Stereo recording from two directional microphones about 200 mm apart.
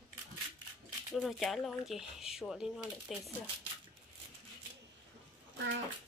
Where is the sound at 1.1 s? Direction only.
Centre (ahead or behind).